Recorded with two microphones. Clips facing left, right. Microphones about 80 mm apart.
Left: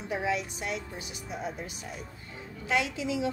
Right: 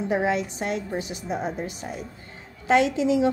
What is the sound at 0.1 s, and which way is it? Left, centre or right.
A woman's voice, right.